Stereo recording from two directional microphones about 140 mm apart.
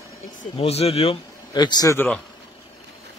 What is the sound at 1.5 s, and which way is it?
Speech, 30° left (ahead or behind).